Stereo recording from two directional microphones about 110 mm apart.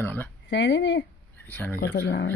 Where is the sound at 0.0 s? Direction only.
20° left (ahead or behind).